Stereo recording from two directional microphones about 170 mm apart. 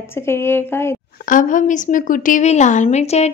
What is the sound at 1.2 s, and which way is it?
Speech, 50° left (ahead or behind).